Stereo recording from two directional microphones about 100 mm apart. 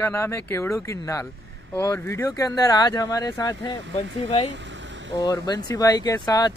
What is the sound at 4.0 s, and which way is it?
Speech, 80° left.